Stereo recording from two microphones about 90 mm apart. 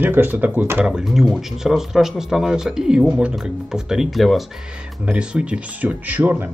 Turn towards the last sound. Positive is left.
turn(degrees=-20)  # may be behind; listen again after turning